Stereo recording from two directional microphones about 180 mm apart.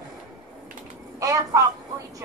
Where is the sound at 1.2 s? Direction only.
20° right (ahead or behind).